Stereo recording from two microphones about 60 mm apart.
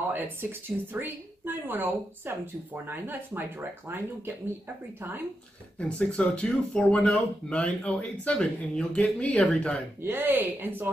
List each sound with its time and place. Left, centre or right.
0.1 s a woman's voice: right
5.8 s speech: centre
10.0 s a woman's voice: right